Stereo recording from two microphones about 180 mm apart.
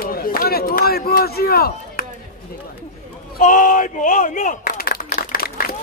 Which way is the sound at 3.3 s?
45° left (ahead or behind).